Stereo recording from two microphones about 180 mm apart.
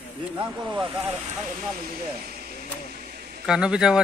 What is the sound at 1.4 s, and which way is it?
Speech, 55° right (ahead or behind).